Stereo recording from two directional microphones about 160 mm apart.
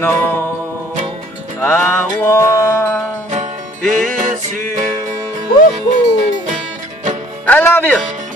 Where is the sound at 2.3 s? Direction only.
15° left (ahead or behind).